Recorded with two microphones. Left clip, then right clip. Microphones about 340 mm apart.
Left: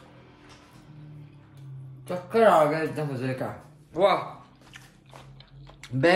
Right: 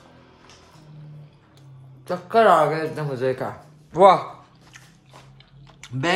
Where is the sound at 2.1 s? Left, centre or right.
Centre.